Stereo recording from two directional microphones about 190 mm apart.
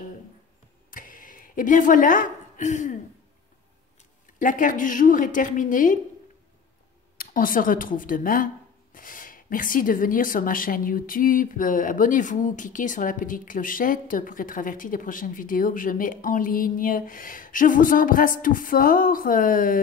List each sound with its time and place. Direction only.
0.8 s a sound: 45° left (ahead or behind)
4.4 s speech: 45° left (ahead or behind)
7.2 s speech: 45° left (ahead or behind)